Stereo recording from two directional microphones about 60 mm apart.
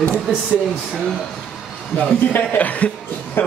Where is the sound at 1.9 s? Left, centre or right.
Left.